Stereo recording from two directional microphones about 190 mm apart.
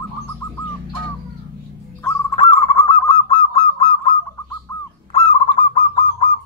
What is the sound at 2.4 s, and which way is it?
Goose, 30° left (ahead or behind).